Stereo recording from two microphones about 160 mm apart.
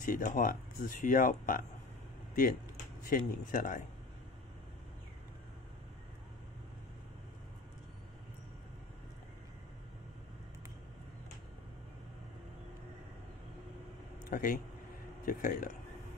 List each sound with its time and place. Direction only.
0.0 s speech: 55° left (ahead or behind)
3.1 s speech: 60° left (ahead or behind)
14.3 s speech: 60° left (ahead or behind)